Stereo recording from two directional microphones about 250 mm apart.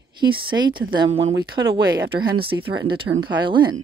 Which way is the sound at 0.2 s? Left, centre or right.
Centre.